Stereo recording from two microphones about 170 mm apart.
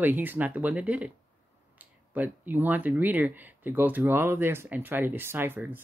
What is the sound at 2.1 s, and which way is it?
Speech, 10° right (ahead or behind).